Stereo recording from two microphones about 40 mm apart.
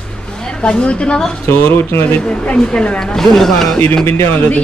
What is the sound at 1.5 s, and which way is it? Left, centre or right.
Speech, left.